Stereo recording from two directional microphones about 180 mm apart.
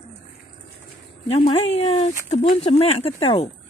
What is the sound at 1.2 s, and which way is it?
Speech, 30° left (ahead or behind).